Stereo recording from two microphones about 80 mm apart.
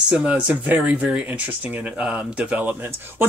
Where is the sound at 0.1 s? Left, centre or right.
Centre.